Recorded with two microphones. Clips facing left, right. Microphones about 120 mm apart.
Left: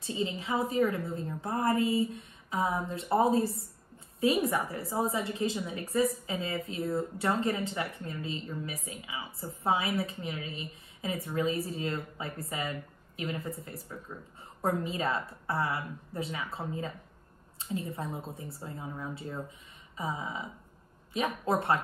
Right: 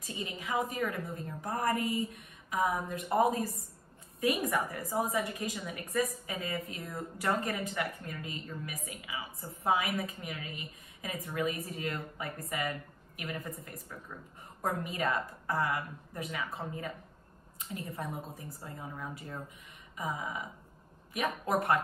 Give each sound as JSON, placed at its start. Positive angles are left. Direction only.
{"t": 0.0, "sound": "a woman's voice", "side_deg": 30}